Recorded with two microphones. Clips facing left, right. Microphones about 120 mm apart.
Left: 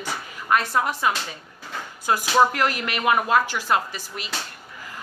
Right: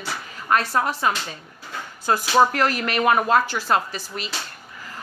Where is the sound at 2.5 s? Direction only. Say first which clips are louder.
Right 3 dB; 15° left (ahead or behind).